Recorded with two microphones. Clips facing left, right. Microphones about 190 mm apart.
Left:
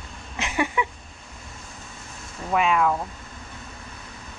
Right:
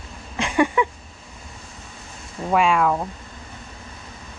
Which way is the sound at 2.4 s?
30° right (ahead or behind).